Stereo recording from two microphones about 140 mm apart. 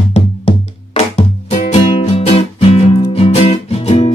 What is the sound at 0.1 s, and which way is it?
Music, 50° left (ahead or behind).